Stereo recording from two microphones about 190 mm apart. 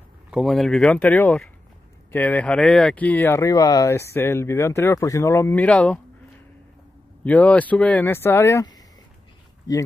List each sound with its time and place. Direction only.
0.3 s speech: centre (ahead or behind)
7.2 s speech: 10° left (ahead or behind)